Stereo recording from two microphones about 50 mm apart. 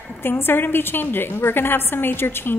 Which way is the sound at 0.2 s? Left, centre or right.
Left.